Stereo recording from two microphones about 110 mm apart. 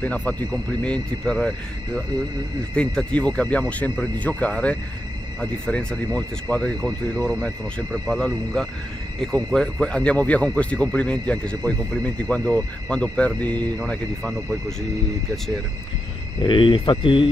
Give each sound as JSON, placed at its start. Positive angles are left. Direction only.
{"t": 0.0, "sound": "speech", "side_deg": 15}
{"t": 2.7, "sound": "speech", "side_deg": 10}
{"t": 16.4, "sound": "speech", "side_deg": 50}